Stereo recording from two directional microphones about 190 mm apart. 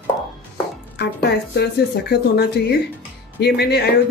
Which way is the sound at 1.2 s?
60° left (ahead or behind).